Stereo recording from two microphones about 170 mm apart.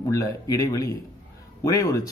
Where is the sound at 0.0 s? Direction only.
20° left (ahead or behind).